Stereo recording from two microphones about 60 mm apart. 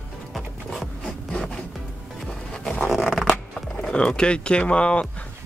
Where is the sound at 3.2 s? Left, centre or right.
Centre.